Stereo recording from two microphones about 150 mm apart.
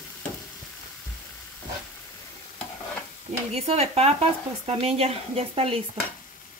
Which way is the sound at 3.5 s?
45° right (ahead or behind).